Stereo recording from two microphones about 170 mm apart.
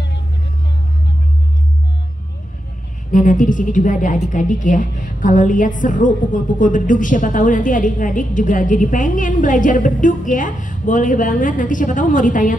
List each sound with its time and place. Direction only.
3.1 s a woman's voice: 50° left (ahead or behind)